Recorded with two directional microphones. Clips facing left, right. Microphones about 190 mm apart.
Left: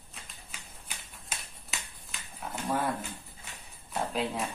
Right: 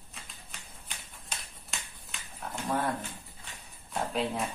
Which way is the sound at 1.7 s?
Centre (ahead or behind).